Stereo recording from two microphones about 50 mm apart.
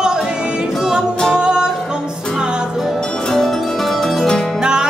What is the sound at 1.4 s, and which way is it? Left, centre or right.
Music, centre.